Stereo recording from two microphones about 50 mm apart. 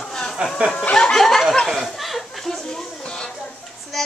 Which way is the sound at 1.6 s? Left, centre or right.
Centre.